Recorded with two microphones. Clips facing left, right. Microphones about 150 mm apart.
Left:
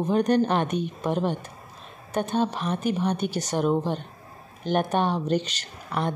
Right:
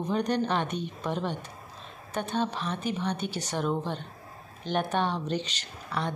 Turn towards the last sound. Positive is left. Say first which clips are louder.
# left 4 dB
turn(degrees=45)  # may be behind; listen again after turning